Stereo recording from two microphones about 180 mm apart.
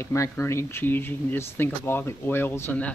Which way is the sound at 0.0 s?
15° left (ahead or behind).